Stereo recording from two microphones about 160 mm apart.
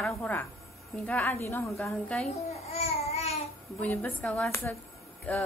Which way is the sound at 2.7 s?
40° left (ahead or behind).